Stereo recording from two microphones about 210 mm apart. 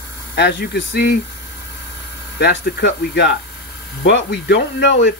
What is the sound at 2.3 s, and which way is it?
Speech, 55° left (ahead or behind).